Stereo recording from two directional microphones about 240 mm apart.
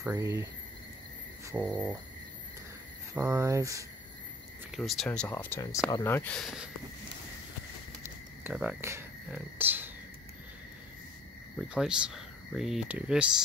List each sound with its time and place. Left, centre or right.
0.0 s speech: centre
1.4 s a sound: centre
1.7 s speech: centre
3.2 s speech: centre
4.6 s speech: centre
8.0 s a sound: centre
11.5 s speech: centre